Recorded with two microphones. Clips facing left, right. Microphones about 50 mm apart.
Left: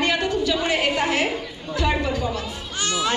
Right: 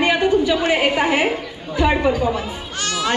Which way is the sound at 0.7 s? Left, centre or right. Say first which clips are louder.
Right 4 dB; centre.